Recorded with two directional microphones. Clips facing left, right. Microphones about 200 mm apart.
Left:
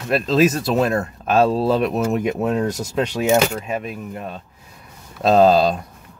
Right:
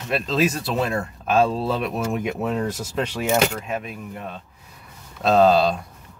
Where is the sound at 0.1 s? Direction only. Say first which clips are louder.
Left 5 dB; 40° left (ahead or behind).